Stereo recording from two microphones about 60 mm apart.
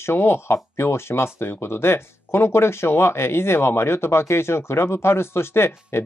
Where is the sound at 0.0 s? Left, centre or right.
Left.